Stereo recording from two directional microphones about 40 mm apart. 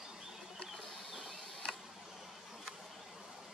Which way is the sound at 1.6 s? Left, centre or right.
Left.